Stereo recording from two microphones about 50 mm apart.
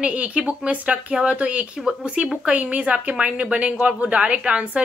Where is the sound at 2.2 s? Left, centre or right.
Centre.